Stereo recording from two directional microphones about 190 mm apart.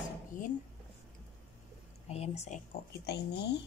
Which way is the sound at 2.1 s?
35° left (ahead or behind).